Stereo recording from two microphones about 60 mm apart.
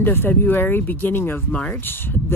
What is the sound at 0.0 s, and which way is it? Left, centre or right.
Speech, left.